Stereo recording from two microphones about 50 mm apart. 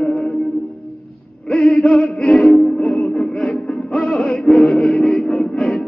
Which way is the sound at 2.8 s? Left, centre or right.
Left.